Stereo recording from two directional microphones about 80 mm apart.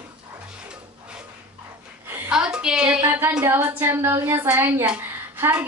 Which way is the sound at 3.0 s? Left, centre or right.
Right.